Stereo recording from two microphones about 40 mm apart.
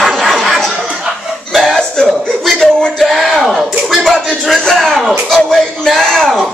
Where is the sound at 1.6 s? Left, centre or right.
Centre.